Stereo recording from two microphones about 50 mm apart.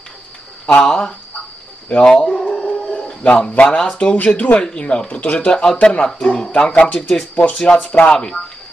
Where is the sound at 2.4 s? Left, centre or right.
Centre.